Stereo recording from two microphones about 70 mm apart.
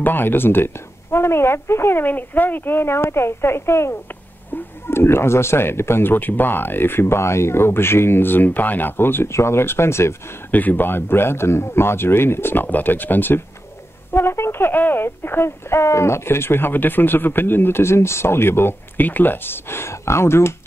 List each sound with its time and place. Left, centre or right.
0.0 s speech: left
10.5 s speech: left